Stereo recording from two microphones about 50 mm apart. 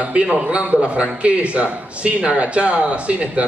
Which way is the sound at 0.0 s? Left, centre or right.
Right.